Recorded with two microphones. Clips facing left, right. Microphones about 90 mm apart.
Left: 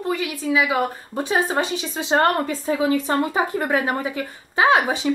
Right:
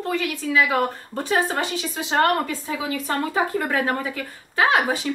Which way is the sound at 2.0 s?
30° left (ahead or behind).